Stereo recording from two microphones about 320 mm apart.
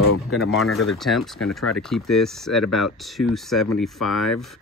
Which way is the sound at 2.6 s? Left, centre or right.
Left.